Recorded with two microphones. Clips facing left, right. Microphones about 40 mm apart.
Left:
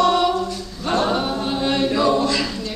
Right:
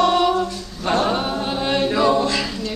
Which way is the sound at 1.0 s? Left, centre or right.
Centre.